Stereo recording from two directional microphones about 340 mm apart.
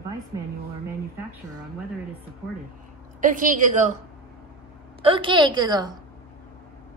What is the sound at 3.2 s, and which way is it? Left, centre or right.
Speech, right.